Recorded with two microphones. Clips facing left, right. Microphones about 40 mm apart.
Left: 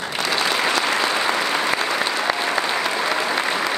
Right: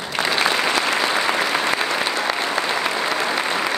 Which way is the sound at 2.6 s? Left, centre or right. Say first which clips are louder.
Even; centre.